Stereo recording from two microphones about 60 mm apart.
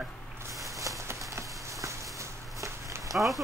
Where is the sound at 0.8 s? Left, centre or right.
Right.